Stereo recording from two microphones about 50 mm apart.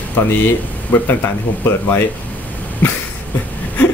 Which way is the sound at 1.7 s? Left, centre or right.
Left.